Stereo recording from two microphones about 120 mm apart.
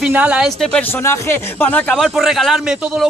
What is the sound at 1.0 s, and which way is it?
Speech, 20° left (ahead or behind).